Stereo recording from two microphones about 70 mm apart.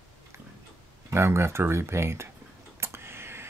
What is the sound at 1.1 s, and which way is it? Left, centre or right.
Speech, right.